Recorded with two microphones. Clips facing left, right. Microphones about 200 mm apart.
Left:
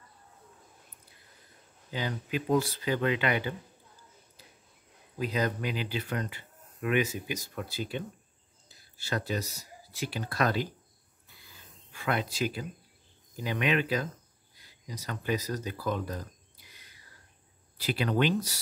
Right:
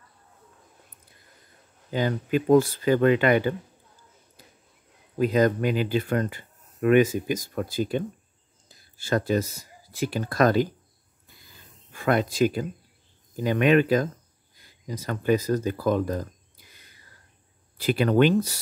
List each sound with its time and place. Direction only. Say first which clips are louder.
1.9 s speech: right 9 dB; 50° right (ahead or behind)
5.2 s speech: right 9 dB; 50° right (ahead or behind)
11.9 s speech: right 8 dB; 50° right (ahead or behind)
17.7 s speech: right 8 dB; 50° right (ahead or behind)